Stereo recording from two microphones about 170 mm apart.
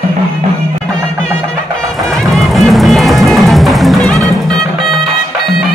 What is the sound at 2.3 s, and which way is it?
Music, centre (ahead or behind).